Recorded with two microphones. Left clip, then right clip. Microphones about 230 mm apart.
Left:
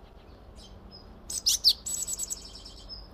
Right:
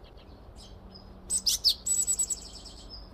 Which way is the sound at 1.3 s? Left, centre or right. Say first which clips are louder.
Left 2 dB; left.